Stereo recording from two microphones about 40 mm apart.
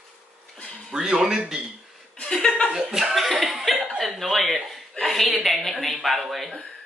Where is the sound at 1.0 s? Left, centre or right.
Centre.